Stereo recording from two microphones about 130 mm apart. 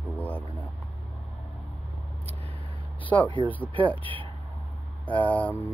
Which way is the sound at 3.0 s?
10° left (ahead or behind).